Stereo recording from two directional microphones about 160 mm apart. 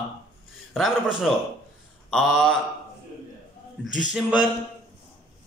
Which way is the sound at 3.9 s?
5° right (ahead or behind).